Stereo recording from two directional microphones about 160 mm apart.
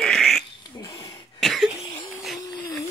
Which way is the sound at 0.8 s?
25° left (ahead or behind).